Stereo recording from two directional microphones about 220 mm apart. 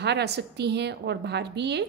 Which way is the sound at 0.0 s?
50° right (ahead or behind).